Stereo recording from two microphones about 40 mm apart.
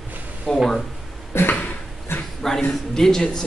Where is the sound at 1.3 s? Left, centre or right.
Left.